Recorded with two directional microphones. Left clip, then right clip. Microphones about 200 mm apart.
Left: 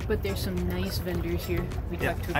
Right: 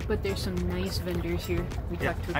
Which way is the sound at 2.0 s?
10° left (ahead or behind).